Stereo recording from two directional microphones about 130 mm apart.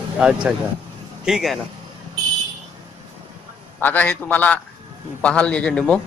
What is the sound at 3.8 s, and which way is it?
A man's voice, 15° left (ahead or behind).